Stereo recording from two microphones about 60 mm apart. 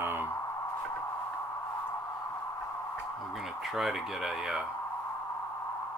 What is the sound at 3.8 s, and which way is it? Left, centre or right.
Speech, centre.